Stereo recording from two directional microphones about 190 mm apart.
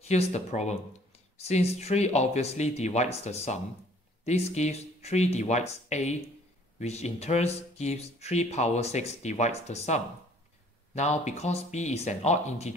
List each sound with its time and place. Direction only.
0.0 s speech: 35° left (ahead or behind)